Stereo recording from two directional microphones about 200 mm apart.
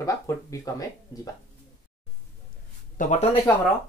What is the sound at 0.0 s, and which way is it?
Speech, 15° left (ahead or behind).